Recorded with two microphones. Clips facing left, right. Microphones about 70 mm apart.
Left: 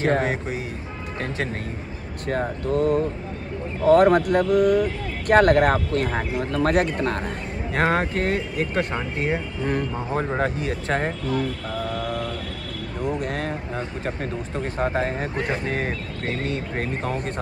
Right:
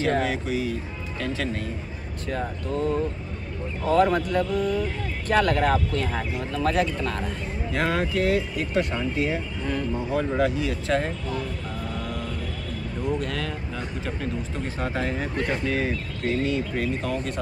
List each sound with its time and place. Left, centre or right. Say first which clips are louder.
0.0 s speech: left 2 dB; left
2.2 s speech: left 5 dB; left
5.3 s speech: left 5 dB; left
11.3 s vehicle: left 5 dB; left
13.0 s speech: left 2 dB; left